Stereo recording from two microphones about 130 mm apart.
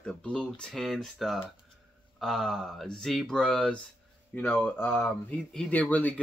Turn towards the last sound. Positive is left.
turn(degrees=10)  # may be behind; listen again after turning